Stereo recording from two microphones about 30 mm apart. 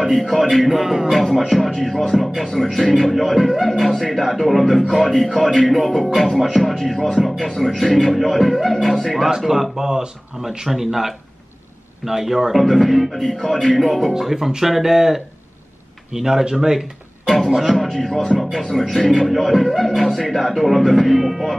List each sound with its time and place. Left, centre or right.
0.0 s a man's voice: centre
1.1 s a man's voice: centre
3.7 s a man's voice: centre
9.5 s speech: centre
12.5 s a man's voice: centre
14.6 s speech: centre
16.4 s speech: right
17.7 s a man's voice: centre